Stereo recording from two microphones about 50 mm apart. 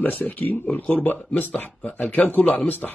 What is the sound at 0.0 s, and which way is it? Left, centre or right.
Speech, left.